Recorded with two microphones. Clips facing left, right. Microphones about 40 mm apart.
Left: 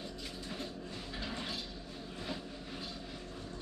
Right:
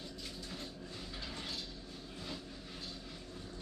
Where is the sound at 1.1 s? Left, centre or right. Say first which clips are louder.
Left 5 dB; centre.